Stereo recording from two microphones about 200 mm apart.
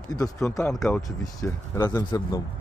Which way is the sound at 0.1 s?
15° left (ahead or behind).